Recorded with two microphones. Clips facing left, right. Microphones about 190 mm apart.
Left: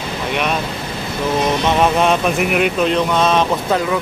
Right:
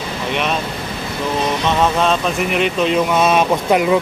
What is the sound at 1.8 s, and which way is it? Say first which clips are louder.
Speech: left 1 dB; 15° left (ahead or behind).